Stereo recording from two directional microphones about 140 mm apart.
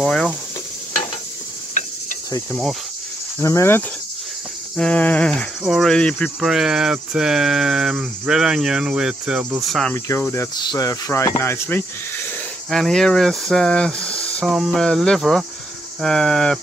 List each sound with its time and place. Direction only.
0.0 s speech: 5° left (ahead or behind)
1.7 s mechanisms: 60° left (ahead or behind)
3.4 s speech: 20° left (ahead or behind)
4.7 s a sound: 10° left (ahead or behind)
5.6 s cricket: centre (ahead or behind)
9.7 s cricket: centre (ahead or behind)
9.9 s speech: 20° left (ahead or behind)
12.6 s speech: centre (ahead or behind)
14.4 s cricket: centre (ahead or behind)